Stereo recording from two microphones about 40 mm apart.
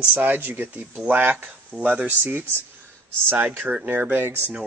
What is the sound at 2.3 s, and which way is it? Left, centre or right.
Speech, right.